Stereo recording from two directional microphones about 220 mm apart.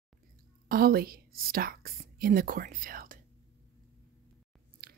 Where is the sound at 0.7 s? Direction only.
45° right (ahead or behind).